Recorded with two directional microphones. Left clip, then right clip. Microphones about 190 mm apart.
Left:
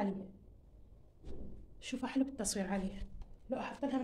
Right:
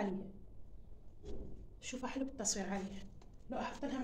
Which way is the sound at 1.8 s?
60° left (ahead or behind).